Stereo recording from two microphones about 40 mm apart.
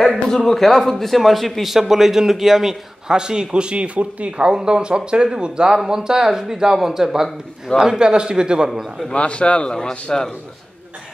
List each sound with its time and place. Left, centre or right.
0.3 s a man's voice: centre
3.2 s speech: right
8.6 s speech: centre
9.1 s a man's voice: left